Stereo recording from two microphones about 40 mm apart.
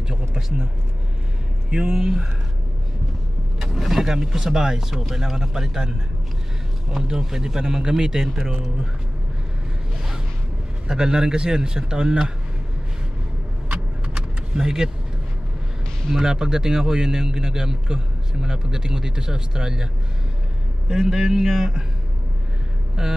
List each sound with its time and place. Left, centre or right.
0.4 s a man's voice: centre
1.7 s a man's voice: right
3.5 s a man's voice: centre
7.0 s a man's voice: centre
10.9 s speech: centre
13.7 s keys jangling: right
16.2 s a man's voice: centre
20.9 s a man's voice: centre
23.0 s a man's voice: centre